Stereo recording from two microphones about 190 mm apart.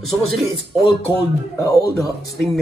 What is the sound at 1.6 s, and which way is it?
Speech, 20° left (ahead or behind).